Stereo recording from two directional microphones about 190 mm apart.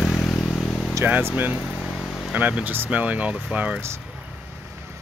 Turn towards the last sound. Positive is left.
turn(degrees=-5)  # may be behind; listen again after turning